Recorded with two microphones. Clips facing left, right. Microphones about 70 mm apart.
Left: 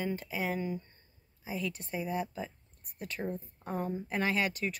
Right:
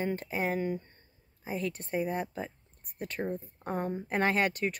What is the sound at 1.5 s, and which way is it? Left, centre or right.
Speech, right.